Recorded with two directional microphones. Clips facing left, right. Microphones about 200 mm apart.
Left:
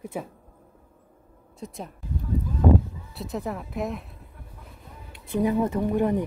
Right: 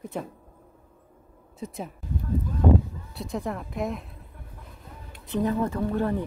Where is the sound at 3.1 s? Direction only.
Centre (ahead or behind).